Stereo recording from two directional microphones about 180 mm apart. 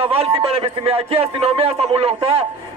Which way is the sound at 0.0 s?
30° right (ahead or behind).